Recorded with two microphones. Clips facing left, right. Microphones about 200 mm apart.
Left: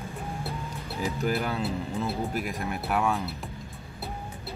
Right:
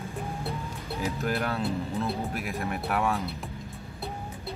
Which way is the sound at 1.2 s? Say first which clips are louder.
Left 1 dB; centre (ahead or behind).